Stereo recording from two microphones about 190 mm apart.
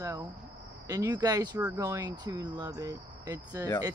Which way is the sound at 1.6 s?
10° right (ahead or behind).